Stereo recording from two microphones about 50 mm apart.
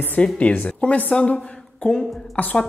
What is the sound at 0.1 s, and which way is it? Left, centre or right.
A woman's voice, left.